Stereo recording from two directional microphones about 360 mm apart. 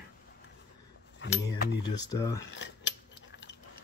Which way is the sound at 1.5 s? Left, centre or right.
Left.